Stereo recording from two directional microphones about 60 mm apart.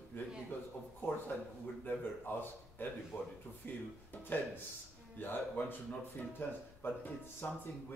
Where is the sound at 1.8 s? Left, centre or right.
Left.